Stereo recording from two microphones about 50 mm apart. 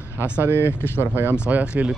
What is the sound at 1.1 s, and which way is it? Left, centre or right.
Speech, right.